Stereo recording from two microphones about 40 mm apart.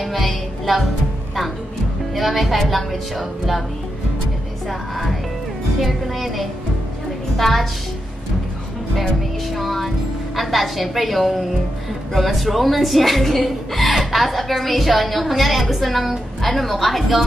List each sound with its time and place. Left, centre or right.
0.0 s music: centre
2.1 s speech: centre
4.6 s a woman's voice: centre
9.6 s speech: centre